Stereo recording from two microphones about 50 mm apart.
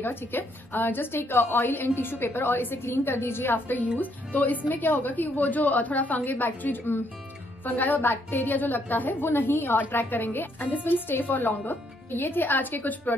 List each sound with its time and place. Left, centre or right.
0.0 s a woman's voice: left
2.8 s a woman's voice: left
4.0 s a woman's voice: left